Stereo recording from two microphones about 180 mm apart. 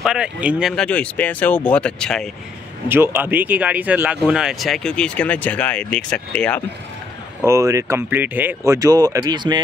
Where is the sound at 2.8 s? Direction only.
10° right (ahead or behind); by 6.6 s 5° left (ahead or behind).